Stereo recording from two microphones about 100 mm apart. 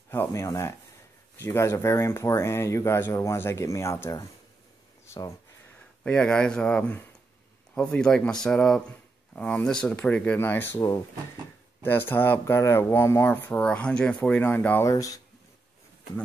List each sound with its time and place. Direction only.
0.1 s speech: 25° left (ahead or behind)
5.0 s a sound: 30° left (ahead or behind)
6.0 s speech: 10° left (ahead or behind)
11.8 s speech: 20° left (ahead or behind)
14.9 s speech: 35° left (ahead or behind)